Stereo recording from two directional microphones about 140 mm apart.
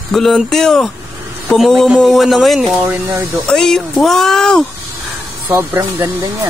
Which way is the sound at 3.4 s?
5° left (ahead or behind).